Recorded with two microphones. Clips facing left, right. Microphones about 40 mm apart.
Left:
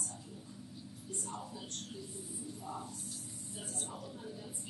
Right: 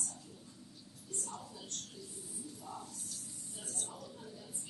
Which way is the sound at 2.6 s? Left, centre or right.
Centre.